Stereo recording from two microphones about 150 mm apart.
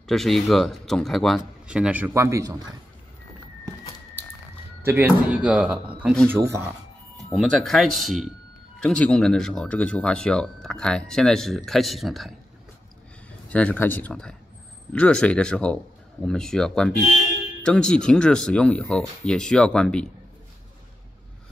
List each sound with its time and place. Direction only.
0.0 s speech: centre (ahead or behind); by 2.6 s 20° right (ahead or behind)
4.8 s speech: 10° right (ahead or behind)
7.3 s speech: 5° left (ahead or behind)
13.5 s speech: 10° left (ahead or behind)